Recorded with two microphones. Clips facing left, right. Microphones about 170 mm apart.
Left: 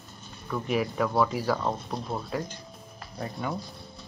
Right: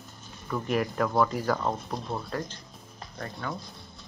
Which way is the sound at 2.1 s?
10° left (ahead or behind).